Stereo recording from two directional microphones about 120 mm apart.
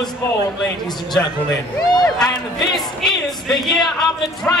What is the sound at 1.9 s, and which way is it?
Speech, 35° left (ahead or behind).